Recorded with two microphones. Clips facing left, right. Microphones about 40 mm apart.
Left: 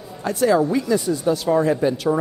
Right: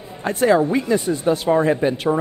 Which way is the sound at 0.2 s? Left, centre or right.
Right.